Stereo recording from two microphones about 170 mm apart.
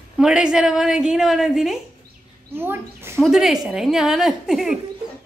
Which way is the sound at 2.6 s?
15° right (ahead or behind).